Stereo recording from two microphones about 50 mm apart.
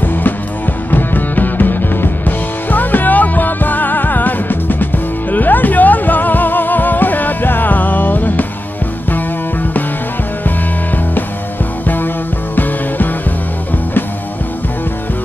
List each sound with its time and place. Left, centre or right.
0.0 s music: left
12.5 s music: left